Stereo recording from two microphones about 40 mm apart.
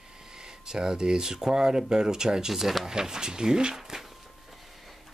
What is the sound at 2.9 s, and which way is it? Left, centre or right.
Speech, centre.